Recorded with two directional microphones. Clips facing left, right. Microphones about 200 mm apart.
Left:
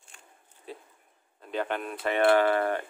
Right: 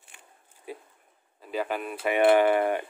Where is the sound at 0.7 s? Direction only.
10° right (ahead or behind).